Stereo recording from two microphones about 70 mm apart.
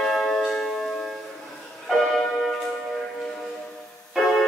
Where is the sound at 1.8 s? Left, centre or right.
Centre.